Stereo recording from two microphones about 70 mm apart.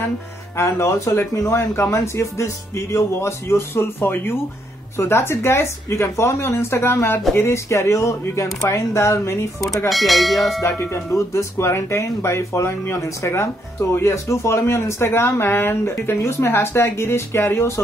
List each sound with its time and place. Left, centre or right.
0.6 s speech: left
9.8 s speech: centre
10.8 s speech: left